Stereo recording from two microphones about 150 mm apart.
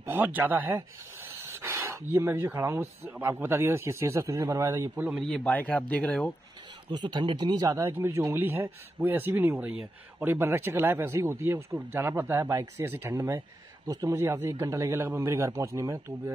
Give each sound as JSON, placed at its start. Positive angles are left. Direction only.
{"t": 0.0, "sound": "speech", "side_deg": -15}
{"t": 5.2, "sound": "speech", "side_deg": 5}
{"t": 6.9, "sound": "a man's voice", "side_deg": -30}